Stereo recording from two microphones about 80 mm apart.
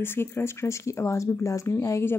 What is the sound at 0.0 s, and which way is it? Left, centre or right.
Speech, left.